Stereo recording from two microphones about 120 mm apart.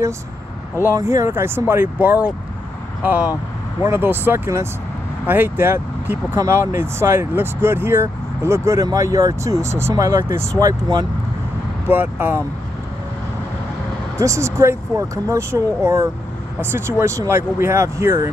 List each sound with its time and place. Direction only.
0.8 s speech: 25° right (ahead or behind)
11.9 s speech: 15° right (ahead or behind)
14.1 s speech: 25° right (ahead or behind)